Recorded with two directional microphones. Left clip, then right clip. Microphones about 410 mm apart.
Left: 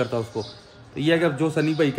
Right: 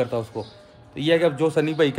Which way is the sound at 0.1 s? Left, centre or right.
Centre.